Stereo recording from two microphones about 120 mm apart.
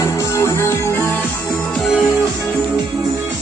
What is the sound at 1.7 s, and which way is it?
Music, centre (ahead or behind).